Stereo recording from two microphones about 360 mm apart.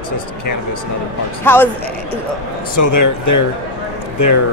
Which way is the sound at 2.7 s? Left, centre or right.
Left.